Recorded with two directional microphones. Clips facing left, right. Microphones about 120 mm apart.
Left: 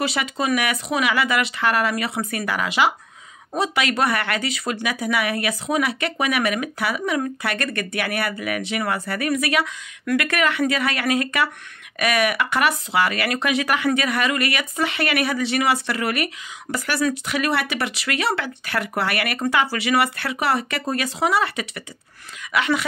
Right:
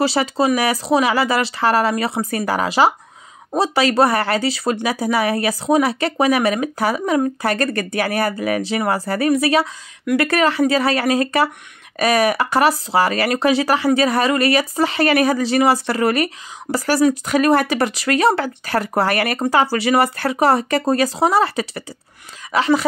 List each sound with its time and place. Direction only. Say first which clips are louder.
0.0 s speech: right 6 dB; 35° right (ahead or behind)